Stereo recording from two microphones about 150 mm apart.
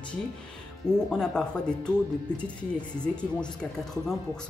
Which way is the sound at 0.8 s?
5° left (ahead or behind).